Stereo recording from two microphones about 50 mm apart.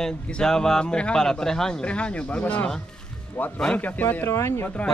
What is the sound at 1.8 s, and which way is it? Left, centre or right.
Speech, left.